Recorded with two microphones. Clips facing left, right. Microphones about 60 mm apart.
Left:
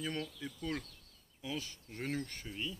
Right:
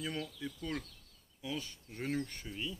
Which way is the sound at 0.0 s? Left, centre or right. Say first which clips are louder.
Even; centre.